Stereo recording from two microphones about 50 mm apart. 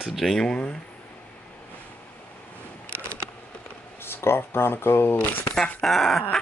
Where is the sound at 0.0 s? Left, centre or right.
Centre.